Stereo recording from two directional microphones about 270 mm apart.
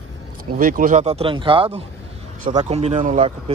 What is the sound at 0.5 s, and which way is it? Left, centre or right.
Speech, right.